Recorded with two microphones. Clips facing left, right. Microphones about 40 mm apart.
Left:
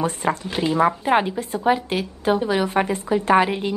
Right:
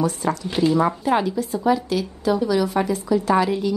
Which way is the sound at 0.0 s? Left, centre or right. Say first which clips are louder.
Even; left.